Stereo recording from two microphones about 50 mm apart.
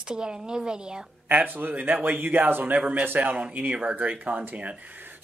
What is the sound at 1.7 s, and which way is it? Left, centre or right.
Speech, right.